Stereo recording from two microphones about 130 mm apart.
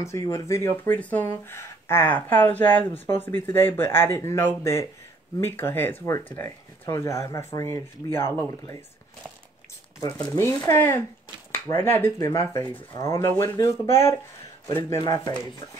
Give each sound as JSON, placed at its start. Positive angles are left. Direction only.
{"t": 0.0, "sound": "speech", "side_deg": 25}
{"t": 10.2, "sound": "speech", "side_deg": 25}